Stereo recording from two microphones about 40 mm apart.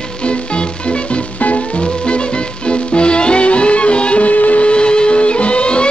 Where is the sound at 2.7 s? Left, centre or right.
Left.